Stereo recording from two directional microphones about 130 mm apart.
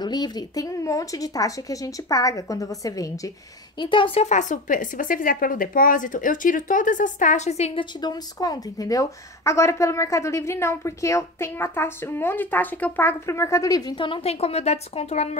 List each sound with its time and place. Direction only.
0.0 s a woman's voice: 35° left (ahead or behind)
3.8 s speech: 40° left (ahead or behind)
4.3 s a woman's voice: 70° left (ahead or behind); by 7.8 s 55° left (ahead or behind)
8.0 s a woman's voice: 30° left (ahead or behind); by 15.2 s 60° left (ahead or behind)